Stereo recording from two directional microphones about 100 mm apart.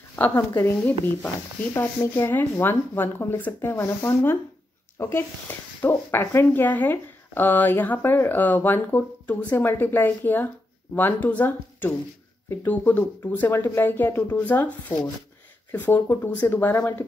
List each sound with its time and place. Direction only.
0.1 s a woman's voice: 25° left (ahead or behind)
1.7 s speech: 25° left (ahead or behind)